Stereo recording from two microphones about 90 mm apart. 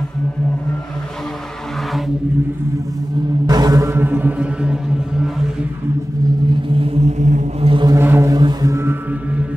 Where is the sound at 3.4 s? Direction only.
45° right (ahead or behind).